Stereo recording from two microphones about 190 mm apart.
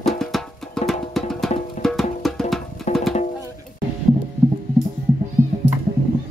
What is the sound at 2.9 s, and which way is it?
Music, 35° left (ahead or behind).